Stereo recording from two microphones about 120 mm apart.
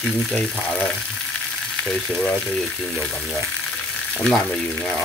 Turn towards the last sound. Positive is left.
turn(degrees=5)  # may be behind; listen again after turning